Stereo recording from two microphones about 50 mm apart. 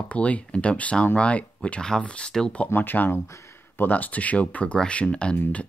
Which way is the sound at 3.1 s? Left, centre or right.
Left.